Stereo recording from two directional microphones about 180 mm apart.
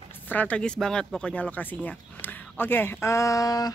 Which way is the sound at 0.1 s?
10° left (ahead or behind).